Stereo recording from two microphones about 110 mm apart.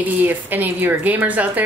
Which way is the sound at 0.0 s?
15° right (ahead or behind).